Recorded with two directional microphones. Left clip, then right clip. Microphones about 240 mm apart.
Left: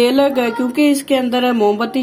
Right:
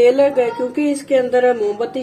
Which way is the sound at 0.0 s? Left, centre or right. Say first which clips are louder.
Right 1 dB; left.